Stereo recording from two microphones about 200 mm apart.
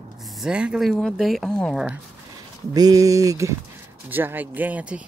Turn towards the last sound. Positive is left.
turn(degrees=-5)  # may be behind; listen again after turning